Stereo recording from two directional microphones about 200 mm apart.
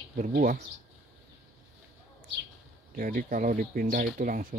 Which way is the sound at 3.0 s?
45° right (ahead or behind).